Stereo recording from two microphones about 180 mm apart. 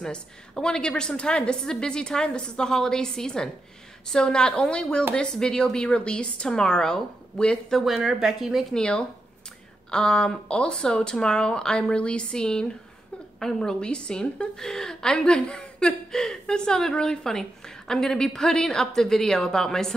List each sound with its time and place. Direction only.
0.0 s a woman's voice: 5° left (ahead or behind)